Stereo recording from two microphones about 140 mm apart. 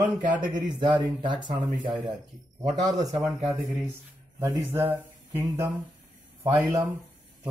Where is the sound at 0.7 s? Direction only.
30° right (ahead or behind).